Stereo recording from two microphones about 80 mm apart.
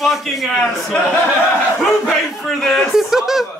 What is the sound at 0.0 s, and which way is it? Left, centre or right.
Speech, centre.